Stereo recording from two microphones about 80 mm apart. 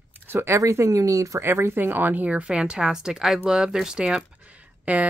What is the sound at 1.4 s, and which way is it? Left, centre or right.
Speech, right.